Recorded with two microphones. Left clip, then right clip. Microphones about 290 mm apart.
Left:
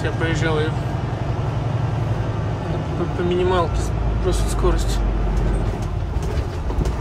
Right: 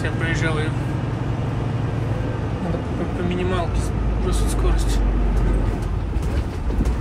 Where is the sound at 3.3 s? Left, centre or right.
Centre.